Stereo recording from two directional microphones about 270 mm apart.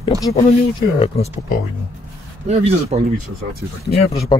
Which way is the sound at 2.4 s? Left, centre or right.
Right.